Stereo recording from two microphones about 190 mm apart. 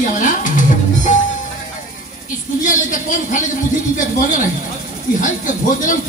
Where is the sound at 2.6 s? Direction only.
45° left (ahead or behind).